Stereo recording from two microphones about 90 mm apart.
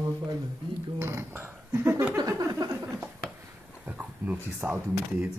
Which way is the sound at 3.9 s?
20° right (ahead or behind).